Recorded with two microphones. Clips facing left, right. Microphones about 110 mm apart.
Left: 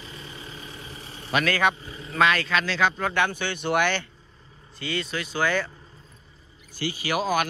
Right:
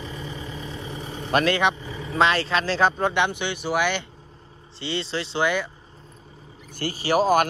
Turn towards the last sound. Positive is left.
turn(degrees=-45)  # may be behind; listen again after turning